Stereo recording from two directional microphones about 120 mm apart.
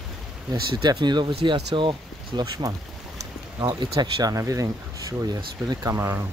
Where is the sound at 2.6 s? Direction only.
25° right (ahead or behind).